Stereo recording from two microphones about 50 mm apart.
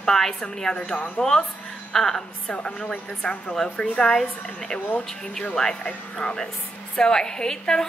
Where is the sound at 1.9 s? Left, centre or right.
Centre.